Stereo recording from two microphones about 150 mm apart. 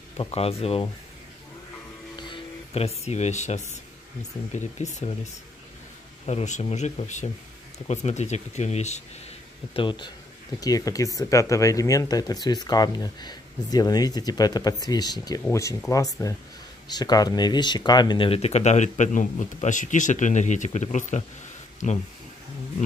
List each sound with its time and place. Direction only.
0.2 s speech: 40° left (ahead or behind)
2.1 s music: 35° left (ahead or behind); by 3.6 s 50° left (ahead or behind)
4.5 s speech: 50° left (ahead or behind)
6.2 s speech: 45° left (ahead or behind)
9.8 s speech: 30° left (ahead or behind); by 22.0 s 55° left (ahead or behind)